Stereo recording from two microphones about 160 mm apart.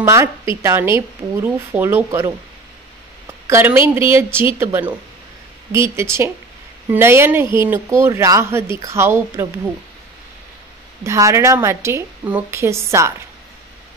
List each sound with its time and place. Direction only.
0.0 s speech: 15° right (ahead or behind)
3.3 s a sound: 15° right (ahead or behind)
3.9 s speech: 15° right (ahead or behind)
11.1 s speech: 20° right (ahead or behind)